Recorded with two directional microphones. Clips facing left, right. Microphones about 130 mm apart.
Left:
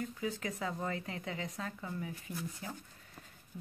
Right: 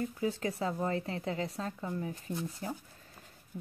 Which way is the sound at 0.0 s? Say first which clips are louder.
Right 5 dB; 30° right (ahead or behind).